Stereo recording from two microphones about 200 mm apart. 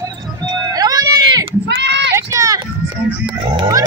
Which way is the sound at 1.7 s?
60° right (ahead or behind).